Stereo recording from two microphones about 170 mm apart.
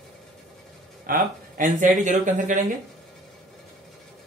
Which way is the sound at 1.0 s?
55° right (ahead or behind).